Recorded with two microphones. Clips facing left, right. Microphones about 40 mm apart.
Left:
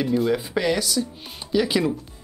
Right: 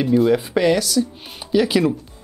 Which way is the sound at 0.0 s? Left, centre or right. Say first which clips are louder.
Right 5 dB; centre.